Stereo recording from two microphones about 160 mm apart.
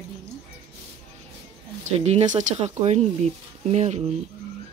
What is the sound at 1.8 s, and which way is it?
Speech, 45° right (ahead or behind).